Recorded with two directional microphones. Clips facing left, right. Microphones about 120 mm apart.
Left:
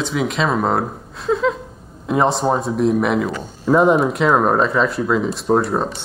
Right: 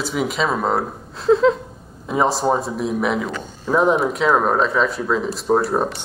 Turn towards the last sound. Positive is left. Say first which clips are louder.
# left 1 dB
turn(degrees=0)  # may be behind; listen again after turning